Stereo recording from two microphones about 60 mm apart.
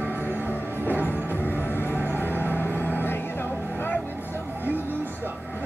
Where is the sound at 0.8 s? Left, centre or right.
Left.